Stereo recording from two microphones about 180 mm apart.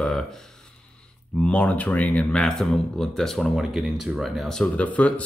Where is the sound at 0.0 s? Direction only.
5° left (ahead or behind).